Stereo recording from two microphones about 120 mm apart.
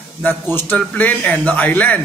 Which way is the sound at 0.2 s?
15° left (ahead or behind).